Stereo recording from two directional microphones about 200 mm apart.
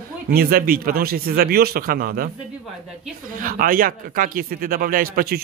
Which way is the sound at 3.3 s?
45° right (ahead or behind).